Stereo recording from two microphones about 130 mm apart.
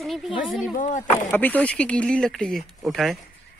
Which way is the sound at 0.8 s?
70° left (ahead or behind).